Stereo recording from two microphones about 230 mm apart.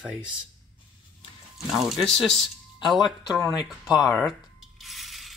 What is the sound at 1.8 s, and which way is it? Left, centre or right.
Speech, centre.